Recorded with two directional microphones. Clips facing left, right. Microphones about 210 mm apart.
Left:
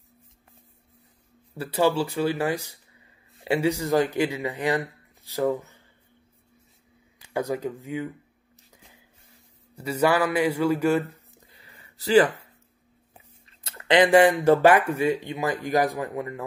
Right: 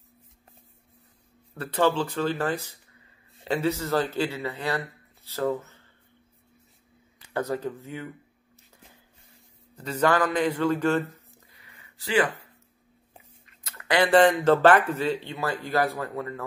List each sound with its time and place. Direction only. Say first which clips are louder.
1.5 s speech: left 1 dB; 10° left (ahead or behind)
7.3 s speech: left 1 dB; 10° left (ahead or behind)
9.8 s speech: left 1 dB; 10° left (ahead or behind)
11.5 s a sound: left 2 dB; 30° left (ahead or behind)
13.5 s speech: left 5 dB; 30° left (ahead or behind)